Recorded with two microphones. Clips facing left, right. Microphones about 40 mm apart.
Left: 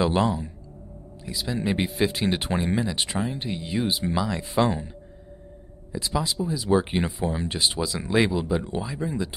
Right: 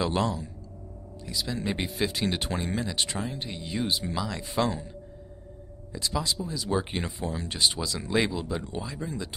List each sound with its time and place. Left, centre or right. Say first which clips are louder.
0.0 s speech: left 5 dB; centre
4.6 s speech: left 4 dB; left
5.9 s speech: left 3 dB; centre